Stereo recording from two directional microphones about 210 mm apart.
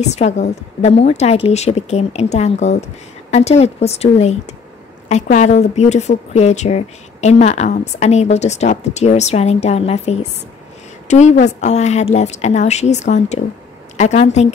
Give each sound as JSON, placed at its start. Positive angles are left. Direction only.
{"t": 0.0, "sound": "a woman's voice", "side_deg": 35}